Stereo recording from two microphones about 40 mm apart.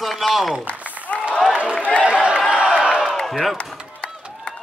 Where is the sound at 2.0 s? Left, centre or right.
Right.